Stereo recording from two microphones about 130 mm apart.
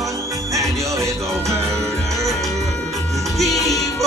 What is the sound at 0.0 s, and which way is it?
Music, 25° right (ahead or behind).